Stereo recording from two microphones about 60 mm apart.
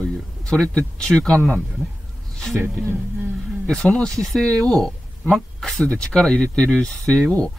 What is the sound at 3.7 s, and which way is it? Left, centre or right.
Speech, centre.